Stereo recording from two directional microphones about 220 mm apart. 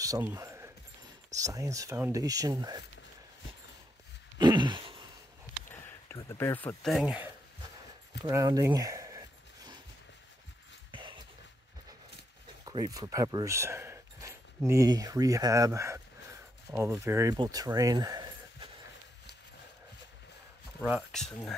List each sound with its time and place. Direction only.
0.0 s a sound: 15° right (ahead or behind)
1.3 s speech: 15° right (ahead or behind)
4.4 s a sound: 20° right (ahead or behind)
5.7 s speech: 15° left (ahead or behind); by 9.2 s 15° right (ahead or behind)
10.9 s dog: 20° right (ahead or behind)
12.6 s speech: 15° right (ahead or behind)
20.8 s speech: centre (ahead or behind)